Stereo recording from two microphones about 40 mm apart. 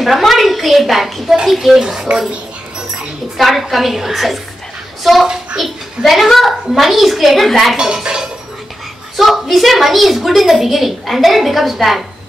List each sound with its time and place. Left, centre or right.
0.0 s a woman's voice: centre
3.3 s a woman's voice: centre
7.7 s speech: centre
9.1 s a woman's voice: centre